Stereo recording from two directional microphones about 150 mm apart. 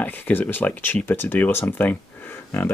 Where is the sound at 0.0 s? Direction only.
10° left (ahead or behind).